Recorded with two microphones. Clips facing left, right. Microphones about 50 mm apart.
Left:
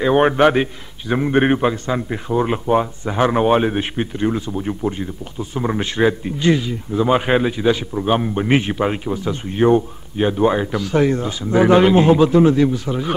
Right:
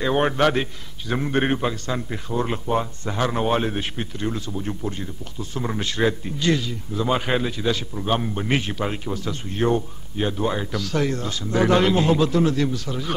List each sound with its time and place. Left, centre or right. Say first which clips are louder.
0.0 s a man's voice: left 6 dB; left